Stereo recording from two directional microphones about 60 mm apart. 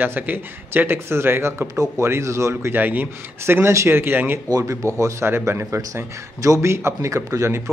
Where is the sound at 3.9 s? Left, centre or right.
Right.